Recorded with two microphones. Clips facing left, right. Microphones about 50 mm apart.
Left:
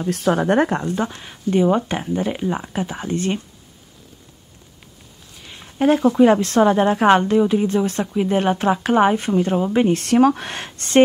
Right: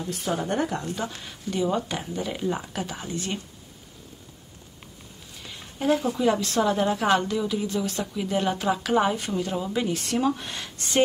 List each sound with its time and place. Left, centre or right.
0.1 s speech: left
0.6 s a woman's voice: left
3.1 s a woman's voice: left
5.8 s a woman's voice: left
9.9 s speech: left
10.6 s speech: left